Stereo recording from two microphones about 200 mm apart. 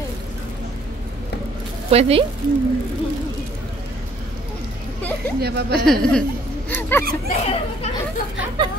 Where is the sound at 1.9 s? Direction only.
30° right (ahead or behind).